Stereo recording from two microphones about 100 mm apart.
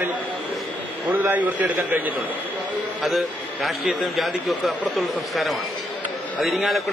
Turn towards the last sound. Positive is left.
turn(degrees=0)  # may be behind; listen again after turning